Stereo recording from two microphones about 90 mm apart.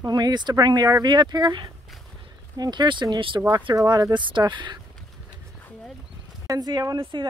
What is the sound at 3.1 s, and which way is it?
Speech, 70° right (ahead or behind).